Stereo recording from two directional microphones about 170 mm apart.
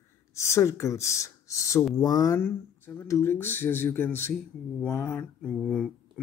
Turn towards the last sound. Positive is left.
turn(degrees=5)  # may be behind; listen again after turning